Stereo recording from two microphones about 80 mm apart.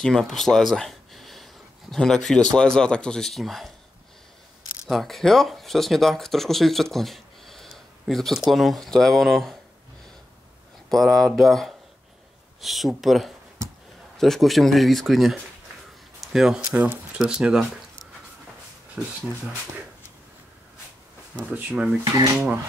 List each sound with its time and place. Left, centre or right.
0.0 s speech: centre
4.8 s speech: centre
10.9 s speech: centre
16.7 s speech: centre
19.0 s speech: centre
21.5 s speech: centre